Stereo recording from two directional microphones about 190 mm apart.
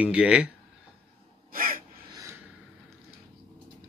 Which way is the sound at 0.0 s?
5° right (ahead or behind).